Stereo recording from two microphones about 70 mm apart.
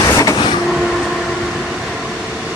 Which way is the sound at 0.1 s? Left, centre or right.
Left.